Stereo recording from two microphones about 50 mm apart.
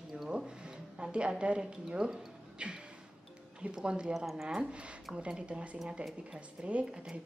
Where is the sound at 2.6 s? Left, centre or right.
Right.